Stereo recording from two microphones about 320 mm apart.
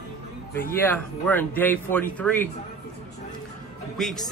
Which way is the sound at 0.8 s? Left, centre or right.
Centre.